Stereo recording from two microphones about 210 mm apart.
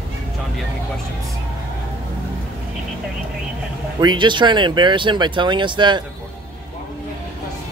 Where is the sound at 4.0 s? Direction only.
20° right (ahead or behind).